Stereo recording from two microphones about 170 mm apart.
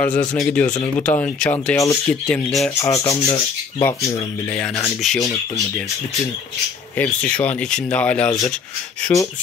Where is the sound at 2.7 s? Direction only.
20° left (ahead or behind).